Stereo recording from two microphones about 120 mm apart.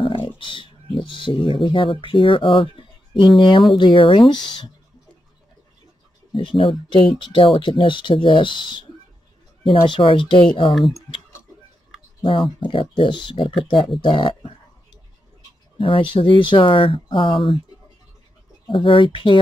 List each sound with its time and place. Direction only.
0.0 s speech: 45° left (ahead or behind)
6.3 s speech: 45° left (ahead or behind)
10.7 s speech: centre (ahead or behind)
12.3 s speech: 45° left (ahead or behind)
15.8 s speech: 45° left (ahead or behind)
18.7 s speech: 45° left (ahead or behind)